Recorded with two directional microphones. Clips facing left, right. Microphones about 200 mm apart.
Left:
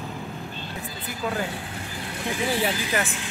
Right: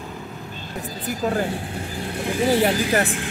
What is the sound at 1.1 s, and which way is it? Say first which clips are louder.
Speech: right 6 dB; 45° right (ahead or behind).